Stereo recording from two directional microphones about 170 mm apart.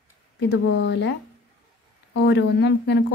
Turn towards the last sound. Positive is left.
turn(degrees=85)